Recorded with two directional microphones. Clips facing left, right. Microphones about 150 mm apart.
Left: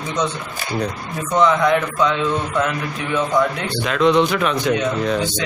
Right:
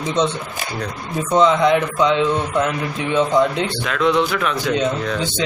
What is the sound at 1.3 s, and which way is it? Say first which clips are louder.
A man's voice: right 1 dB; 20° right (ahead or behind).